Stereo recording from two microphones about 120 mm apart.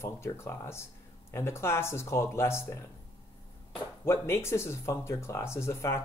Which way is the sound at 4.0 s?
20° left (ahead or behind).